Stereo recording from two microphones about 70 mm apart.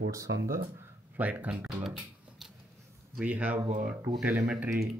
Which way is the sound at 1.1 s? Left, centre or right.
Right.